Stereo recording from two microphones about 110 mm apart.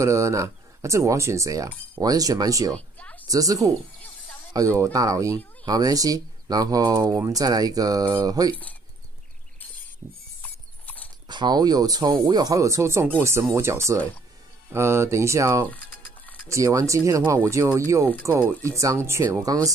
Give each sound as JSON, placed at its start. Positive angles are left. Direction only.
{"t": 0.0, "sound": "speech", "side_deg": -30}
{"t": 2.7, "sound": "a sound", "side_deg": 10}
{"t": 3.3, "sound": "speech", "side_deg": -30}
{"t": 10.4, "sound": "clip-clop", "side_deg": 15}
{"t": 11.2, "sound": "speech", "side_deg": -40}
{"t": 15.7, "sound": "music", "side_deg": 15}
{"t": 16.4, "sound": "speech", "side_deg": -30}